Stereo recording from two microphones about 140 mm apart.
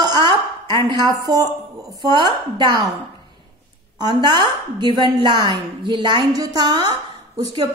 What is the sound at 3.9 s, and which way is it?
A woman's voice, 30° right (ahead or behind).